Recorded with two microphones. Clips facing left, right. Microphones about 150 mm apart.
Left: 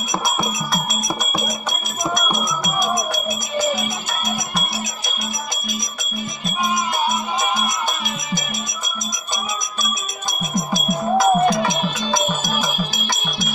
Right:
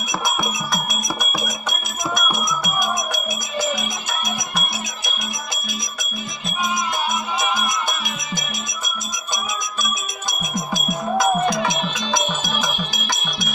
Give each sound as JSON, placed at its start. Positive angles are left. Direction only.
{"t": 1.4, "sound": "music", "side_deg": 10}
{"t": 2.3, "sound": "music", "side_deg": -10}
{"t": 10.4, "sound": "music", "side_deg": -10}
{"t": 11.3, "sound": "music", "side_deg": 10}